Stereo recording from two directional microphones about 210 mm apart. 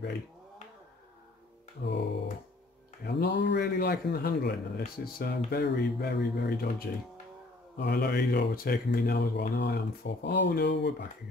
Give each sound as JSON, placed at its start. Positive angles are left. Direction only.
{"t": 1.8, "sound": "music", "side_deg": 55}
{"t": 3.1, "sound": "speech", "side_deg": 55}